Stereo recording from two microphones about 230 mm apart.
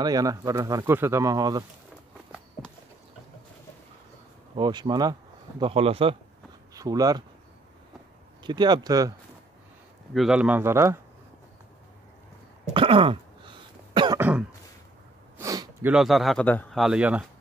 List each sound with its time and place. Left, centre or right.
0.0 s speech: centre
4.6 s speech: centre
6.7 s speech: centre
8.5 s speech: centre
10.1 s speech: centre
12.7 s cough: right
15.3 s a sound: centre
15.9 s a man's voice: centre